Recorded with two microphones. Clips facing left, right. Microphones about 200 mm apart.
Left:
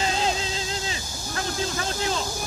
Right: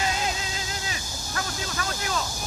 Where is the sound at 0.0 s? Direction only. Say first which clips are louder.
Left 3 dB; 30° left (ahead or behind).